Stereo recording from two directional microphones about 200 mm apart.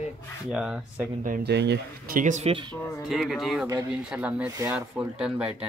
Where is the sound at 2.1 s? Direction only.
40° right (ahead or behind).